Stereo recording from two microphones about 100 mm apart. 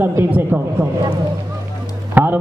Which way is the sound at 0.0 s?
20° right (ahead or behind).